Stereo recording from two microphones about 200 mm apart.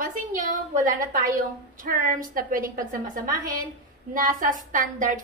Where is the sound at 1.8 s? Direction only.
45° right (ahead or behind).